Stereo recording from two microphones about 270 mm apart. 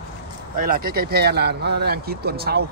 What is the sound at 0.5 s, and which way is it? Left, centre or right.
Speech, right.